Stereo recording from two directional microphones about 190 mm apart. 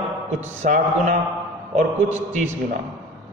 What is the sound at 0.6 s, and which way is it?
Speech, 40° right (ahead or behind).